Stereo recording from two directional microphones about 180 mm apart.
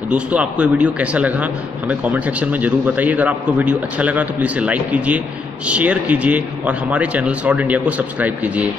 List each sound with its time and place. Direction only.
0.1 s a man's voice: 5° right (ahead or behind)